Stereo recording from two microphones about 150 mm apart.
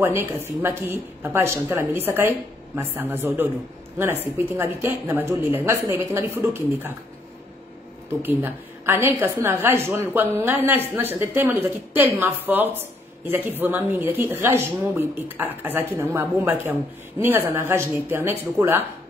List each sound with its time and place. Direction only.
0.0 s a woman's voice: 15° right (ahead or behind)
8.2 s a woman's voice: 15° right (ahead or behind)